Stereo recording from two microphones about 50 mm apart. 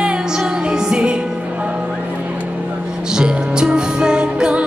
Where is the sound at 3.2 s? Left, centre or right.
Centre.